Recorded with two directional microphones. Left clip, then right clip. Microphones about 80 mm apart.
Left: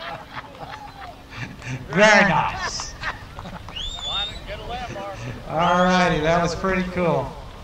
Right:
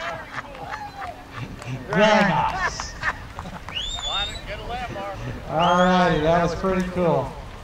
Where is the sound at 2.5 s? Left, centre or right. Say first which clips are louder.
Right 2 dB; right.